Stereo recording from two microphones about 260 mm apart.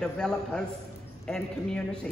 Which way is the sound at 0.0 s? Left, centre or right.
Centre.